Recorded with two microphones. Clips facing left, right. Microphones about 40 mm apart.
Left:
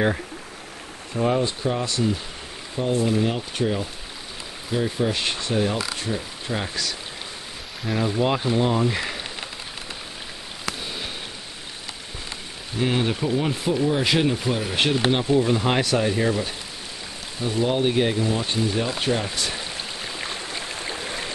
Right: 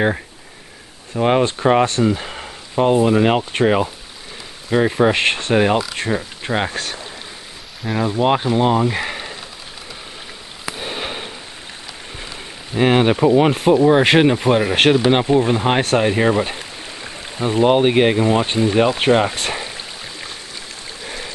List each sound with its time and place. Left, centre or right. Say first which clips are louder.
1.2 s speech: right 7 dB; right
1.9 s a sound: right 6 dB; right
2.9 s speech: right 7 dB; right
7.8 s speech: right 4 dB; centre
8.2 s speech: right 7 dB; right
8.8 s a sound: right 4 dB; right
10.8 s a sound: right 6 dB; right
12.7 s speech: right 9 dB; right
15.2 s speech: right 4 dB; right
15.8 s speech: right 6 dB; right
20.2 s a sound: left 2 dB; centre
20.9 s stream: right 2 dB; centre